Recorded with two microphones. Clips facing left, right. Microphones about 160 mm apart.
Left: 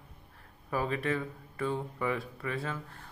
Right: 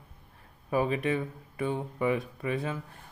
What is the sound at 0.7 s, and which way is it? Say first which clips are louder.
Speech: right 4 dB; 20° right (ahead or behind).